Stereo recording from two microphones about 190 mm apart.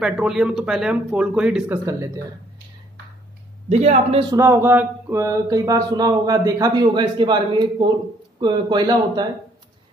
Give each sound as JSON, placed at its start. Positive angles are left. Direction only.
{"t": 0.0, "sound": "speech", "side_deg": -5}
{"t": 3.6, "sound": "speech", "side_deg": -35}
{"t": 4.3, "sound": "speech", "side_deg": -15}